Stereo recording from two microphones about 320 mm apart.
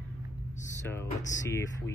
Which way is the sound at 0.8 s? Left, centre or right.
Centre.